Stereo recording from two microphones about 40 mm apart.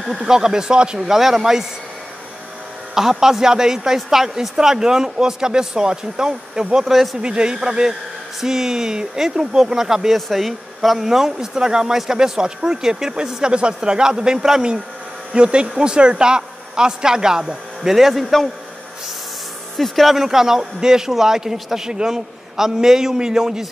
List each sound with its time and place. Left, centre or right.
0.2 s speech: centre
2.9 s speech: centre
6.9 s speech: centre
7.2 s speech: right
10.1 s speech: centre
19.8 s speech: centre